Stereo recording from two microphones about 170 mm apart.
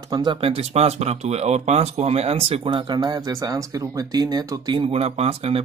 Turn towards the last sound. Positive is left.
turn(degrees=-35)  # may be behind; listen again after turning